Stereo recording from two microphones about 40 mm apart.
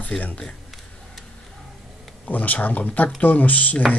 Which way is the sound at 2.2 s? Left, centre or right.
Left.